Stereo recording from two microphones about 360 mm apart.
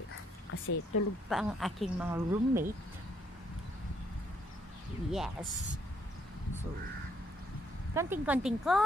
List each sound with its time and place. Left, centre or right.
0.5 s speech: left
1.3 s a woman's voice: centre
5.1 s a woman's voice: centre
7.9 s a woman's voice: centre